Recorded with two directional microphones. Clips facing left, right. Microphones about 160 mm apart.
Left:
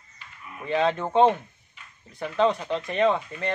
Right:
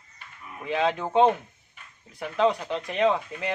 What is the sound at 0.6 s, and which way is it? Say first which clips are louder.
Speech: left 2 dB; centre (ahead or behind).